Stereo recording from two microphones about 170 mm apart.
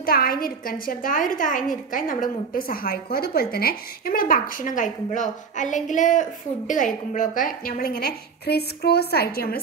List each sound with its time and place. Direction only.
0.0 s a woman's voice: 60° left (ahead or behind)